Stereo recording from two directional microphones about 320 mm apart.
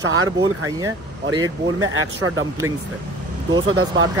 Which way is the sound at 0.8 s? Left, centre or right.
Centre.